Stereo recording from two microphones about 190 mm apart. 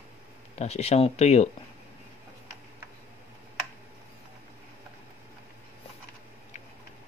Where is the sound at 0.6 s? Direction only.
35° left (ahead or behind).